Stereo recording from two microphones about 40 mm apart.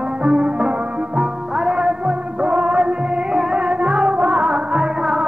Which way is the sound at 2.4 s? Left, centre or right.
Right.